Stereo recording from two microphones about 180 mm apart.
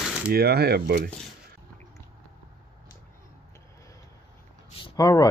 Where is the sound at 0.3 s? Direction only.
60° right (ahead or behind).